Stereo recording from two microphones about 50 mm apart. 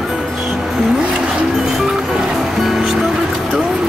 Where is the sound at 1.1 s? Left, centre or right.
Centre.